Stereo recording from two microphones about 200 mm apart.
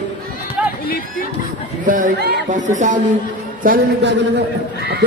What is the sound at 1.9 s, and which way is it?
Speech, 45° right (ahead or behind).